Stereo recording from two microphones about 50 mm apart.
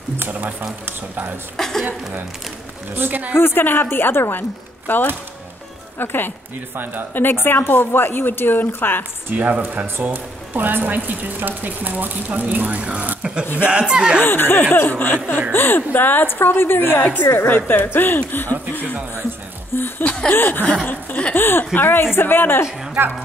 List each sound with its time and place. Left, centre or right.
0.3 s speech: right
1.6 s a woman's voice: centre
3.0 s speech: right
3.3 s speech: left
5.9 s chuckle: left
6.7 s speech: right
7.2 s speech: left
9.3 s speech: right
13.2 s speech: centre
14.2 s speech: left
17.2 s a woman's voice: left
17.6 s speech: left
20.8 s chuckle: left
21.3 s speech: left